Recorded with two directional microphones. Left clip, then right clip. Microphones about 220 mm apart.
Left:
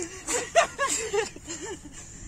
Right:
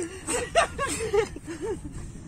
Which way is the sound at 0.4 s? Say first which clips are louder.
Left 1 dB; 25° left (ahead or behind).